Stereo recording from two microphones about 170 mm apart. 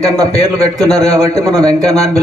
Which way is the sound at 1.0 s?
20° right (ahead or behind).